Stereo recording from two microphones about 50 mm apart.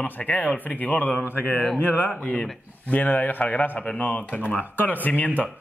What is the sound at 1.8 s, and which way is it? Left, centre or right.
A man's voice, left.